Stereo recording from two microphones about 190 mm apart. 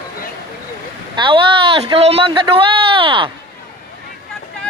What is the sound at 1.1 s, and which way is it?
Speech, 25° right (ahead or behind).